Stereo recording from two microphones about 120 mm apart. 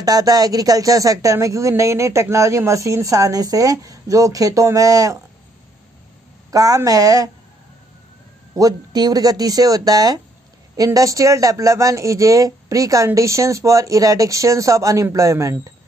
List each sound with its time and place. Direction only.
0.0 s speech: 30° right (ahead or behind)
6.5 s speech: 30° right (ahead or behind)
8.5 s speech: 30° right (ahead or behind)